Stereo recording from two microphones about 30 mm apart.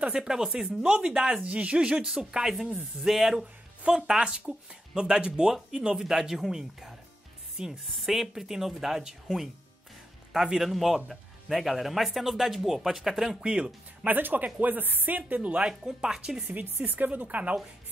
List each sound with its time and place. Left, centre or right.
0.2 s speech: right
1.5 s speech: right
1.8 s speech: right
2.8 s speech: centre
3.9 s speech: right
6.0 s speech: centre
7.8 s speech: centre
8.1 s speech: centre
10.3 s speech: right
10.6 s speech: centre
13.4 s speech: right
14.0 s speech: right
15.8 s speech: right
16.5 s a woman's voice: right